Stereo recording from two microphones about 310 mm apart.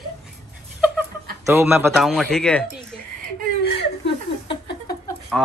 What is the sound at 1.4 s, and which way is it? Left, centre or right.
A woman's voice, centre.